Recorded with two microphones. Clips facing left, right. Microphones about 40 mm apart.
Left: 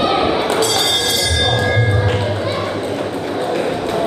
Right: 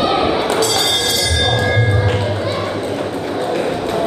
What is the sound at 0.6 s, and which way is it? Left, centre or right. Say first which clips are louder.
Music: even; centre.